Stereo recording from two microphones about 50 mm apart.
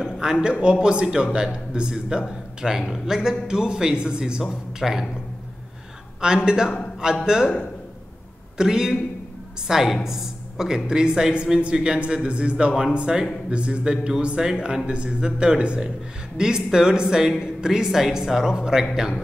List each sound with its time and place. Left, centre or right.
0.2 s speech: centre
6.2 s speech: centre
8.5 s speech: centre